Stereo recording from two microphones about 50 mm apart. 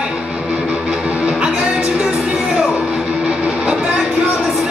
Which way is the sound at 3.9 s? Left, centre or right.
Centre.